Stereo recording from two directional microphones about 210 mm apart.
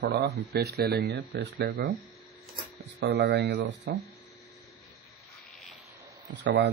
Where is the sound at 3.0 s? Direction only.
55° right (ahead or behind).